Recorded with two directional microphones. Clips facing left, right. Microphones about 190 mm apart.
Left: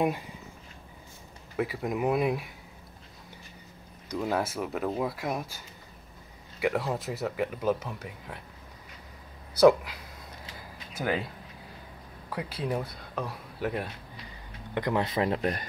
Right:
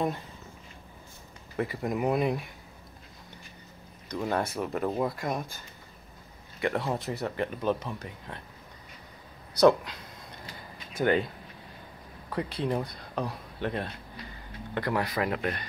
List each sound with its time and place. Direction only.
1.6 s speech: centre (ahead or behind)
4.1 s speech: 5° left (ahead or behind)
6.6 s speech: centre (ahead or behind)
9.5 s speech: 5° left (ahead or behind)
12.3 s speech: 5° left (ahead or behind)
14.7 s speech: 20° left (ahead or behind); by 15.6 s 35° left (ahead or behind)